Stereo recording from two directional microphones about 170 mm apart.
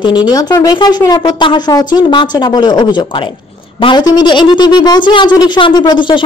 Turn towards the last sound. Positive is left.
turn(degrees=30)  # may be behind; listen again after turning